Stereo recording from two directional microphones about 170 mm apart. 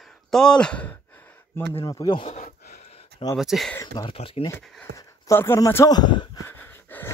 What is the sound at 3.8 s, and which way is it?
Speech, 25° left (ahead or behind).